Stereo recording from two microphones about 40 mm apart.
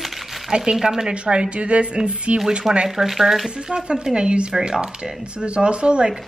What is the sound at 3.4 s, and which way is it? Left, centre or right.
A woman's voice, centre.